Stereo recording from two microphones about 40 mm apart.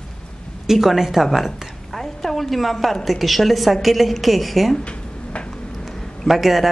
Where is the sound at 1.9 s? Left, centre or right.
Centre.